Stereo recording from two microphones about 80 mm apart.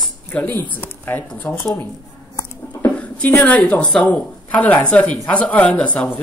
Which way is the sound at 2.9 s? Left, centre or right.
Centre.